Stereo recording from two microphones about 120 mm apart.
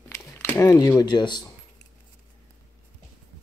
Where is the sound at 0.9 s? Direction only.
35° left (ahead or behind).